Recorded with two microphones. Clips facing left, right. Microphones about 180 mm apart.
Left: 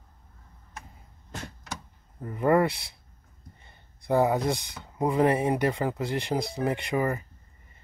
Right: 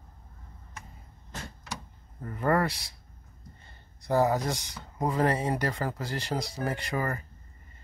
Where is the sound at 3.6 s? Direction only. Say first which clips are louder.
Right 1 dB; 20° left (ahead or behind).